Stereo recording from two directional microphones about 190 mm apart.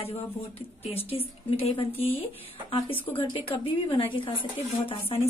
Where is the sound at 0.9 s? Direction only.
30° left (ahead or behind).